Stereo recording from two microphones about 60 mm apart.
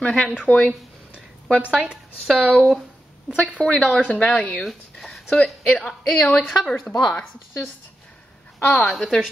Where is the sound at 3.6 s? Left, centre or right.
Centre.